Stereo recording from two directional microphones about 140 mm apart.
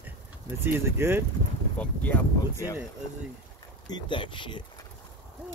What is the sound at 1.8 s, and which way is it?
Speech, 10° left (ahead or behind).